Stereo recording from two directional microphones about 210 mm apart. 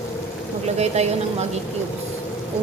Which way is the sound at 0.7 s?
30° right (ahead or behind).